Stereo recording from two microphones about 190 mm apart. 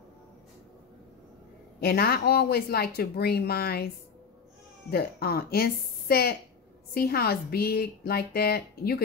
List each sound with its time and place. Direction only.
1.8 s speech: 55° left (ahead or behind)
4.9 s speech: 55° left (ahead or behind)